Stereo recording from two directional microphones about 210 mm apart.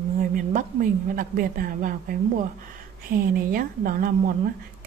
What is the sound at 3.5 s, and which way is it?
Speech, 40° right (ahead or behind).